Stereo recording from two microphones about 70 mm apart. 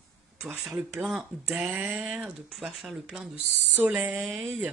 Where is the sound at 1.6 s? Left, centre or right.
Centre.